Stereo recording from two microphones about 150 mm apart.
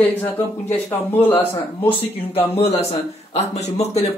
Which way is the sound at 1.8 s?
40° left (ahead or behind).